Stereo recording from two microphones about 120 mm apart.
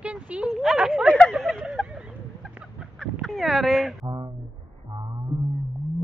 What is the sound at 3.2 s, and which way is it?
Speech, centre (ahead or behind).